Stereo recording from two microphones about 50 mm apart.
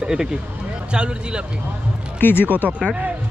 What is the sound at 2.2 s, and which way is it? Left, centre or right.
Speech, left.